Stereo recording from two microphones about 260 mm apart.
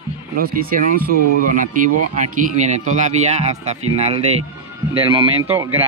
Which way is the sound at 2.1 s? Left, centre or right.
Right.